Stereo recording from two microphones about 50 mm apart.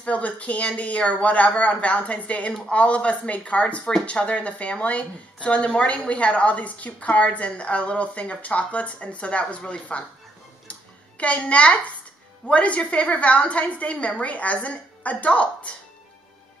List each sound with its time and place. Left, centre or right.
0.0 s speech: left
10.7 s a sound: left
12.4 s a woman's voice: left